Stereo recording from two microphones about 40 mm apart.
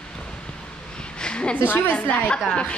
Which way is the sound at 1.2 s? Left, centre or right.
Left.